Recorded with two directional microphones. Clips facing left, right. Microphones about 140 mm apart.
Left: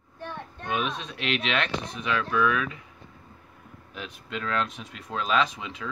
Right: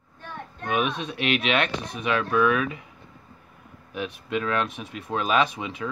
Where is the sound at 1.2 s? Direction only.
10° right (ahead or behind).